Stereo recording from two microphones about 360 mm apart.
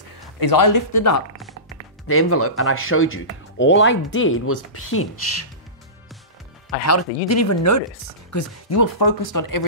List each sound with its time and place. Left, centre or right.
0.4 s speech: left
2.0 s speech: left
6.9 s speech: left
8.9 s speech: left